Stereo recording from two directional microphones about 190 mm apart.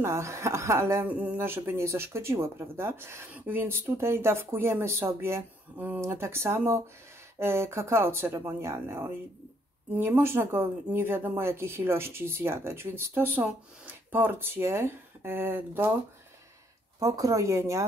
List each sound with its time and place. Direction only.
0.0 s speech: 15° right (ahead or behind)
17.0 s speech: 15° right (ahead or behind)